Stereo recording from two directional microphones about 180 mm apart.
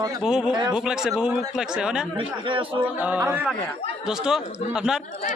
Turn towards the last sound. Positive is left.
turn(degrees=0)  # may be behind; listen again after turning